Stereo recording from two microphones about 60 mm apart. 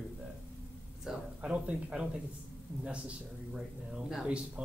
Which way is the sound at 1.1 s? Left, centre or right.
Centre.